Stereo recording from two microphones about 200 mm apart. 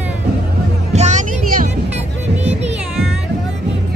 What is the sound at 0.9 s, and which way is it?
Music, 35° right (ahead or behind).